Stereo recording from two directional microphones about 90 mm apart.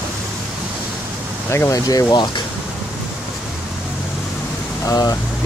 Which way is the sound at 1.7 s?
45° left (ahead or behind).